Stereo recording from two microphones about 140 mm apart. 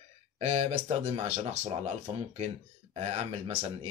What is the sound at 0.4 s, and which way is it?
Speech, 50° right (ahead or behind).